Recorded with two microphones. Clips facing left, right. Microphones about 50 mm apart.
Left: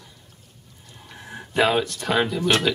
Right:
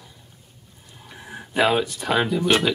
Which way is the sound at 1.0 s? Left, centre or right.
Centre.